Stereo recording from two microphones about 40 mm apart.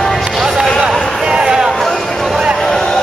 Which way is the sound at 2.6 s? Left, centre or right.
Centre.